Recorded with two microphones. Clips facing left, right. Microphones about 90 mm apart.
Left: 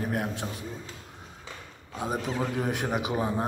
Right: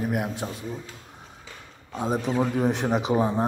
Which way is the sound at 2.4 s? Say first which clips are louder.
Right 5 dB; 20° right (ahead or behind).